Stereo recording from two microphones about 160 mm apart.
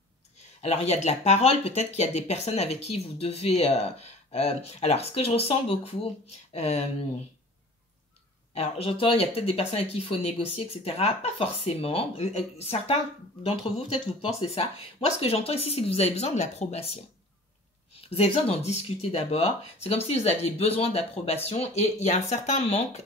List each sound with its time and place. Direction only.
0.6 s speech: 40° left (ahead or behind)
8.5 s speech: 35° left (ahead or behind)
18.1 s speech: 40° left (ahead or behind)